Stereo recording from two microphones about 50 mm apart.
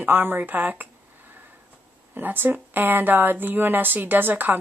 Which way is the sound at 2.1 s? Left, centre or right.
Right.